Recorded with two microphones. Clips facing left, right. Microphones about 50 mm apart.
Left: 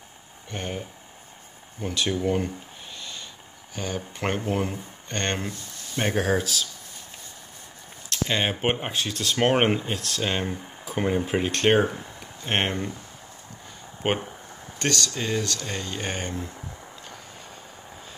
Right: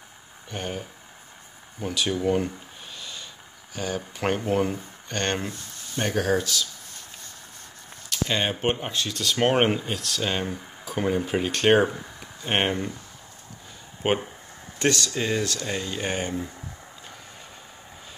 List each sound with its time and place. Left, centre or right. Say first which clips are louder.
0.5 s speech: even; centre
1.8 s speech: even; centre
3.0 s a sound: even; centre
3.7 s speech: right 1 dB; centre
5.9 s speech: even; left
8.3 s speech: even; centre
8.8 s speech: left 1 dB; centre
9.2 s speech: even; centre
14.0 s speech: right 2 dB; centre
14.8 s speech: right 3 dB; centre
15.0 s speech: right 2 dB; centre